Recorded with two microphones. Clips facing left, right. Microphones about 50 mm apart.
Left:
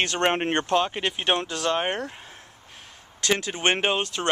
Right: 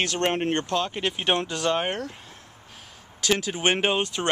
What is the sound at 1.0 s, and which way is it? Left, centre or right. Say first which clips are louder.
Speech: even; centre.